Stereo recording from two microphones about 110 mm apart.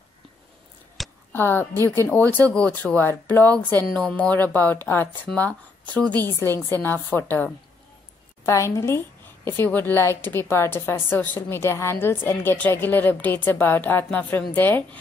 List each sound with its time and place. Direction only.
1.0 s a sound: centre (ahead or behind)
1.3 s speech: 20° left (ahead or behind)
8.5 s a woman's voice: 25° left (ahead or behind)